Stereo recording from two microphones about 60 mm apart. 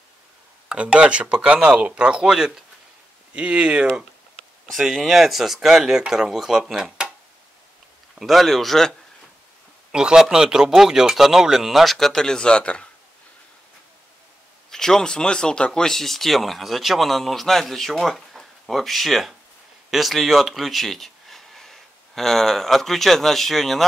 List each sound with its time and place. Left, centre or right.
0.7 s speech: centre
4.7 s speech: centre
8.2 s speech: centre
9.9 s a man's voice: centre
14.7 s speech: centre